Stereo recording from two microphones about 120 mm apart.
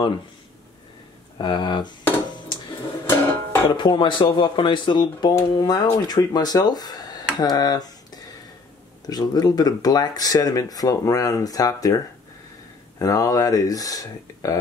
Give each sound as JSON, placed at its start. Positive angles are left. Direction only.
{"t": 1.4, "sound": "speech", "side_deg": 40}
{"t": 3.1, "sound": "music", "side_deg": 15}
{"t": 3.7, "sound": "speech", "side_deg": 40}
{"t": 13.0, "sound": "speech", "side_deg": 30}